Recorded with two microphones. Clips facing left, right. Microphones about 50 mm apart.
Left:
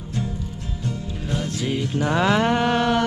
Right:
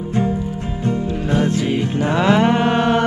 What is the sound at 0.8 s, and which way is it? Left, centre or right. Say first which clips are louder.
Music: right 9 dB; right.